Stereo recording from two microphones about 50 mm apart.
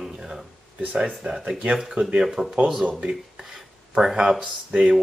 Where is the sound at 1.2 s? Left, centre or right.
Right.